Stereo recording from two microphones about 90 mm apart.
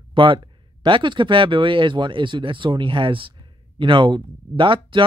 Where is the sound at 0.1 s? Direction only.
70° right (ahead or behind).